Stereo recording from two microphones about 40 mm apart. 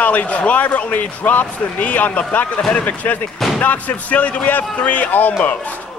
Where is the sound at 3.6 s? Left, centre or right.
Left.